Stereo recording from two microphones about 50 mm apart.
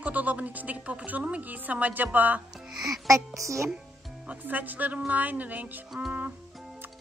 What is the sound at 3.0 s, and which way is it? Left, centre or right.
Speech, right.